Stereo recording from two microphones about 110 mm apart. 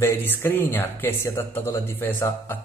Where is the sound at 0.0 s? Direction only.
20° left (ahead or behind).